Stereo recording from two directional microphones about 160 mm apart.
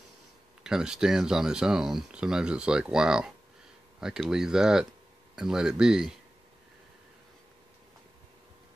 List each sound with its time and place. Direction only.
0.7 s speech: 5° right (ahead or behind)